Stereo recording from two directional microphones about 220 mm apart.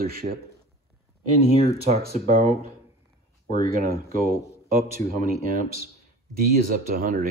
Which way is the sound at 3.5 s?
40° right (ahead or behind).